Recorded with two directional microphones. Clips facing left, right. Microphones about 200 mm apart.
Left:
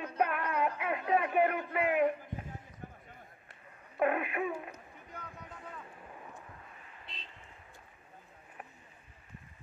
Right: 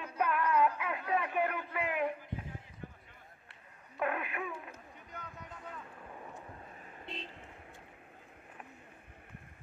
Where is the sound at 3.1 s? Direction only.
50° left (ahead or behind).